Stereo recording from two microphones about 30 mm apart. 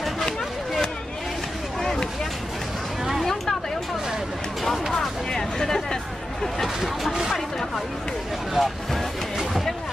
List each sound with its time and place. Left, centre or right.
1.8 s a sound: centre
5.3 s hubbub: centre
8.6 s vehicle: centre